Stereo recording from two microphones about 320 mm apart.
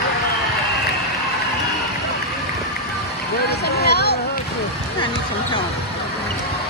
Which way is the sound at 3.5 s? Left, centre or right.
Left.